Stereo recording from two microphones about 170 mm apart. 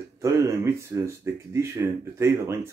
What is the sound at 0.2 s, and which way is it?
Speech, 15° right (ahead or behind).